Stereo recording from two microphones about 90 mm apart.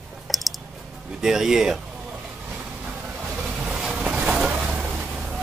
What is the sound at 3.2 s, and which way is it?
Vehicle, 5° right (ahead or behind).